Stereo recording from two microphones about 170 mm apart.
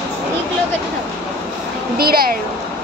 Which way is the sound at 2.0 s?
60° right (ahead or behind).